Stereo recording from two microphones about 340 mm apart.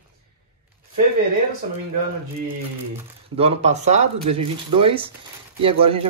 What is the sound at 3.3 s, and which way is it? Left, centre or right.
A man's voice, centre.